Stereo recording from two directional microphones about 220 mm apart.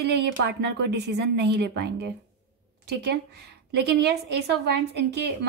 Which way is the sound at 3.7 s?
50° right (ahead or behind).